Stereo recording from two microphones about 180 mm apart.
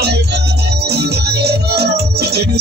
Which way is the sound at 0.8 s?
65° right (ahead or behind).